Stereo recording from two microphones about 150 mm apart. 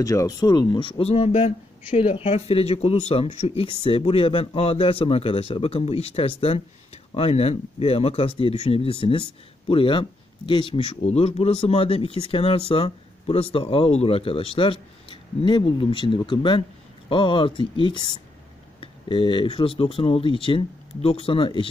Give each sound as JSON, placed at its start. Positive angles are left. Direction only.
{"t": 0.0, "sound": "speech", "side_deg": 20}